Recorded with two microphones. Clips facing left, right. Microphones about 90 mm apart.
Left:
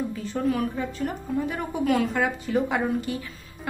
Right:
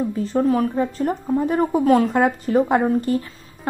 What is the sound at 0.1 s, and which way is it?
A woman's voice, 35° right (ahead or behind).